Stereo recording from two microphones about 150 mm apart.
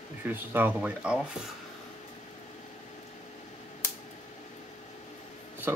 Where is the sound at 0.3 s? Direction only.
15° right (ahead or behind).